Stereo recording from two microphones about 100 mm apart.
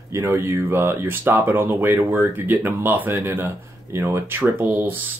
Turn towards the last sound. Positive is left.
turn(degrees=-20)  # may be behind; listen again after turning